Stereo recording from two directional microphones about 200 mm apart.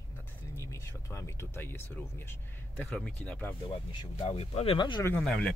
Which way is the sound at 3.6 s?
25° left (ahead or behind).